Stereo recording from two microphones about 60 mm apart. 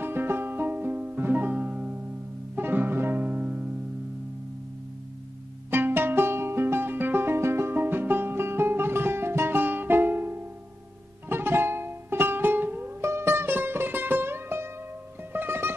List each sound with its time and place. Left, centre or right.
0.0 s music: right
5.7 s music: right
13.0 s music: right